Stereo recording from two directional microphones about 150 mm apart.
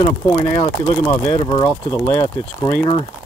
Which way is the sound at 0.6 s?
30° left (ahead or behind).